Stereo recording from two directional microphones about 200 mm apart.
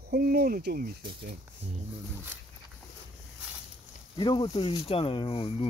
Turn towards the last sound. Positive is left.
turn(degrees=25)  # may be behind; listen again after turning